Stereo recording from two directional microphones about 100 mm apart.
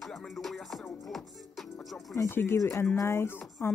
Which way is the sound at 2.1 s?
25° left (ahead or behind).